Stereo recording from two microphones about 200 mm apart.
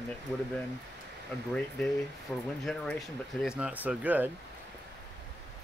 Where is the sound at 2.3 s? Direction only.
10° left (ahead or behind); by 4.3 s 10° right (ahead or behind).